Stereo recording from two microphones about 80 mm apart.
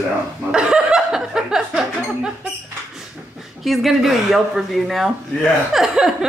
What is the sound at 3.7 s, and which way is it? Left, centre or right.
Speech, centre.